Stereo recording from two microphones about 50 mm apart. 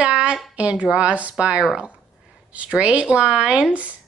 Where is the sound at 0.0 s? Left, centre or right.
Right.